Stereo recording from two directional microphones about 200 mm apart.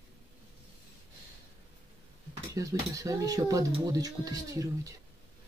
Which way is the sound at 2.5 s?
15° right (ahead or behind).